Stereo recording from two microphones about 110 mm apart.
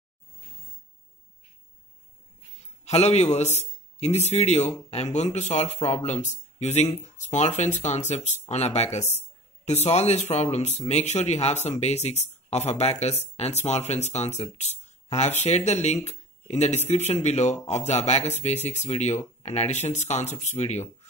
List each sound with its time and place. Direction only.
2.8 s speech: 85° left